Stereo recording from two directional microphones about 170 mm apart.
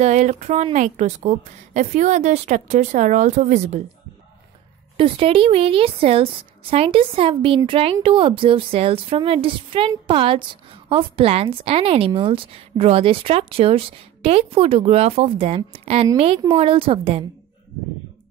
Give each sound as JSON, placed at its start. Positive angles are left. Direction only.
{"t": 0.0, "sound": "a woman's voice", "side_deg": -40}
{"t": 4.9, "sound": "a woman's voice", "side_deg": -30}